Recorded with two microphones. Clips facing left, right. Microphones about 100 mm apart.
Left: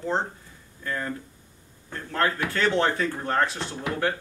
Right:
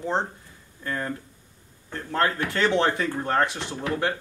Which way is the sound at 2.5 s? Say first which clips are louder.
Right 1 dB; 20° right (ahead or behind).